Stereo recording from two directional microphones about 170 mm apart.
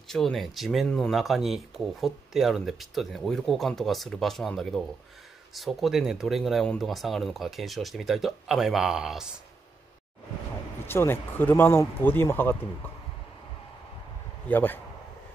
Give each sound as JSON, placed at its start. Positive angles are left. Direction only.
{"t": 0.1, "sound": "speech", "side_deg": 0}
{"t": 10.9, "sound": "speech", "side_deg": 15}
{"t": 14.5, "sound": "speech", "side_deg": 10}